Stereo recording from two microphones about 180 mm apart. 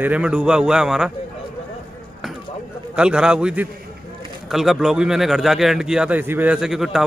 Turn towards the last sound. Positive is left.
turn(degrees=0)  # may be behind; listen again after turning